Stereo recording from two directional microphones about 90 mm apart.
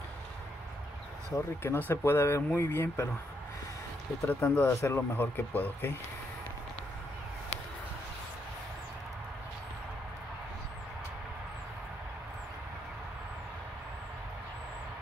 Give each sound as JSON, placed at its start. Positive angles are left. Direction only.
{"t": 1.6, "sound": "speech", "side_deg": 25}
{"t": 4.3, "sound": "speech", "side_deg": 20}